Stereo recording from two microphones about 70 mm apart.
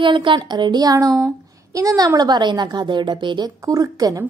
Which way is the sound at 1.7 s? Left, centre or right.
Right.